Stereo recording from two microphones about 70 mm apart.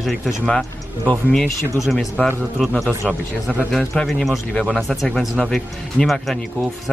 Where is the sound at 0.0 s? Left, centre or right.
Centre.